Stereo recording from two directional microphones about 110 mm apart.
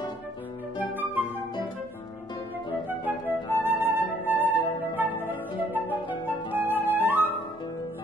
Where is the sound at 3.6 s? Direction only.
20° right (ahead or behind).